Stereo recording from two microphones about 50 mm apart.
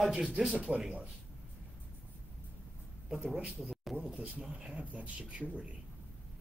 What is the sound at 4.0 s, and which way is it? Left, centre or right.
Speech, right.